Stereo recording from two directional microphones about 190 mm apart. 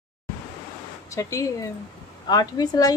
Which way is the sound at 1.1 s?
15° left (ahead or behind).